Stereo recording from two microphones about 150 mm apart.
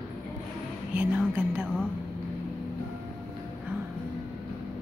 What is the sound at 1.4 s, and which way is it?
Speech, 10° right (ahead or behind).